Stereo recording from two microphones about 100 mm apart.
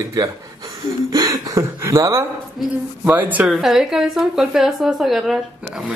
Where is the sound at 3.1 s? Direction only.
15° right (ahead or behind).